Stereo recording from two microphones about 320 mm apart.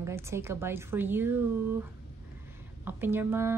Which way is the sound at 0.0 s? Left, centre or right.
Centre.